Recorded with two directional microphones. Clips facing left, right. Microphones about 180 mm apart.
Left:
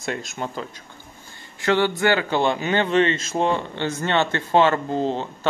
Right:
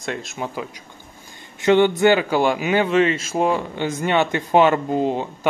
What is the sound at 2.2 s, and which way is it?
Speech, 10° right (ahead or behind).